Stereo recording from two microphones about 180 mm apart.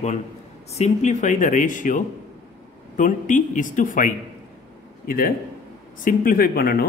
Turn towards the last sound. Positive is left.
turn(degrees=55)  # may be behind; listen again after turning